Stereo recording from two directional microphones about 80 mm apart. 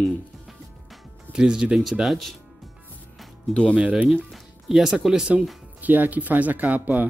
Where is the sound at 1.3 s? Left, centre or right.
Centre.